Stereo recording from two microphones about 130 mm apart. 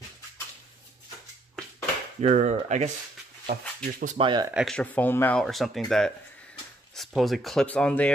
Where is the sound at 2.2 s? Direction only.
60° right (ahead or behind).